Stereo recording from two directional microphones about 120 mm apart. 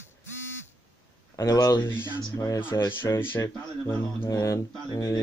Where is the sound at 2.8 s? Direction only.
20° left (ahead or behind).